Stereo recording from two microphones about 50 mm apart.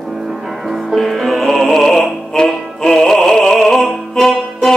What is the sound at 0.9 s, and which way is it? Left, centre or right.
Music, centre.